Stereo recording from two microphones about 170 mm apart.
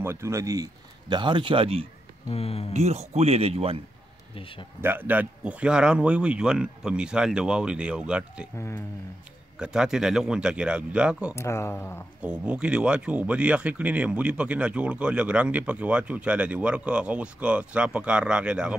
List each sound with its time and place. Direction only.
0.0 s a man's voice: 15° right (ahead or behind); by 1.9 s 35° right (ahead or behind)
2.2 s speech: 35° left (ahead or behind)
2.7 s speech: 40° right (ahead or behind)
4.4 s speech: 30° left (ahead or behind)
4.8 s speech: 10° right (ahead or behind)
8.5 s speech: 15° left (ahead or behind)
9.6 s speech: 5° right (ahead or behind)
11.3 s speech: 15° left (ahead or behind)
12.2 s speech: 5° right (ahead or behind)